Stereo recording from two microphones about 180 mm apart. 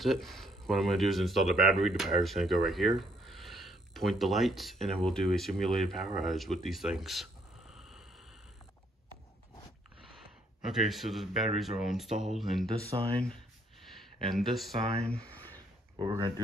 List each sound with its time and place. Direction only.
0.0 s speech: centre (ahead or behind)
10.0 s speech: centre (ahead or behind)
12.9 s speech: 25° right (ahead or behind)
13.8 s a sound: centre (ahead or behind)
15.0 s speech: 5° left (ahead or behind)
16.0 s speech: 25° right (ahead or behind)